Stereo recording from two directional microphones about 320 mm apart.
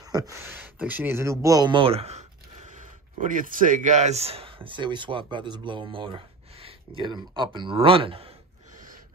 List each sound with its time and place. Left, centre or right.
0.0 s speech: centre